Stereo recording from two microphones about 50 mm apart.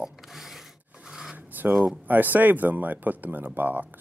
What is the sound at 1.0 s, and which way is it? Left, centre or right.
Filing, centre.